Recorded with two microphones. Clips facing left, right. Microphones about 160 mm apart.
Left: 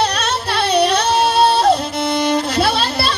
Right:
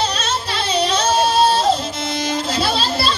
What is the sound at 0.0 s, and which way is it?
Music, 65° left (ahead or behind).